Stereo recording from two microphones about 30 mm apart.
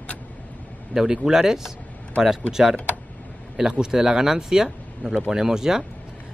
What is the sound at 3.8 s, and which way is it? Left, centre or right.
Speech, right.